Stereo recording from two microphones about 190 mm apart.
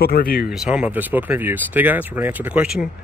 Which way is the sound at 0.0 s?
55° left (ahead or behind).